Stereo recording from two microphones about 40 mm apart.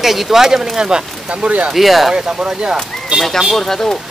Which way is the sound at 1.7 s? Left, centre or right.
Centre.